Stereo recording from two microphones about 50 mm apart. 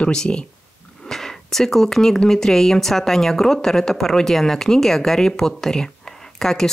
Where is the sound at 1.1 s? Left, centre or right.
Centre.